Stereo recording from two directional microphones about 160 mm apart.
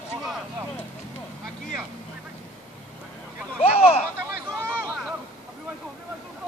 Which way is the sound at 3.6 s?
40° left (ahead or behind).